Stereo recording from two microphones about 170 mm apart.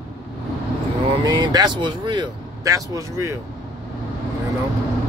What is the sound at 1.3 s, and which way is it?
Speech, 25° right (ahead or behind).